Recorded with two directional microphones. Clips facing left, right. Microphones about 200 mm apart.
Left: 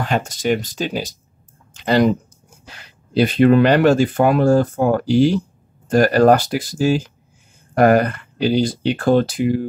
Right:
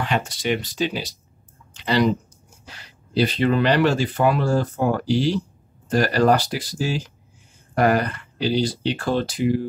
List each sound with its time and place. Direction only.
0.0 s speech: 45° left (ahead or behind)
3.2 s speech: 50° left (ahead or behind)